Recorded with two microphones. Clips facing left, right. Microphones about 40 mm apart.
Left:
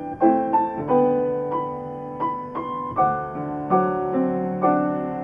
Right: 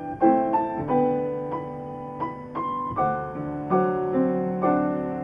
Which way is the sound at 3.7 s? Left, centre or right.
Centre.